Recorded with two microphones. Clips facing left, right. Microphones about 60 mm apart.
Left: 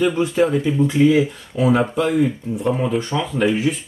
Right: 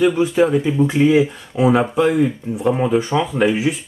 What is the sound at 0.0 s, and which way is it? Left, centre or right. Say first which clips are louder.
Speech: right 2 dB; centre.